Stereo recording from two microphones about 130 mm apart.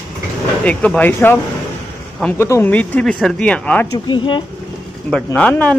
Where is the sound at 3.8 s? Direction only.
35° left (ahead or behind).